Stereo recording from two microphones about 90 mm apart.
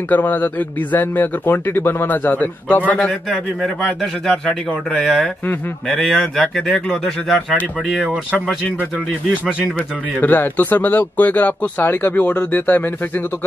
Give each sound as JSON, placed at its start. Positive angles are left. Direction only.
{"t": 0.1, "sound": "a man's voice", "side_deg": 20}